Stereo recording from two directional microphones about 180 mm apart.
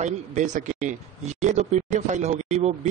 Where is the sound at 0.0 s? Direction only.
40° right (ahead or behind).